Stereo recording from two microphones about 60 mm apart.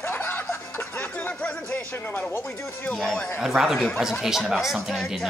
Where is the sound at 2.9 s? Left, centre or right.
Centre.